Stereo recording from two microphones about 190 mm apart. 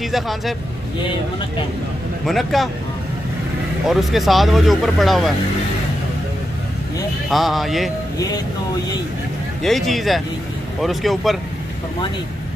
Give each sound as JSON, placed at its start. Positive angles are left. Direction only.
{"t": 0.1, "sound": "speech", "side_deg": 0}
{"t": 2.2, "sound": "speech", "side_deg": 0}
{"t": 3.8, "sound": "speech", "side_deg": 0}
{"t": 7.2, "sound": "speech", "side_deg": 0}
{"t": 9.6, "sound": "speech", "side_deg": 0}